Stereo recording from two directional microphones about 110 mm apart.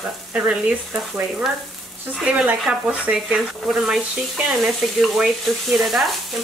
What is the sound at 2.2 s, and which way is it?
Speech, 10° right (ahead or behind).